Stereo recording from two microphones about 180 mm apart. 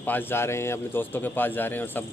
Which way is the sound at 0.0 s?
10° left (ahead or behind).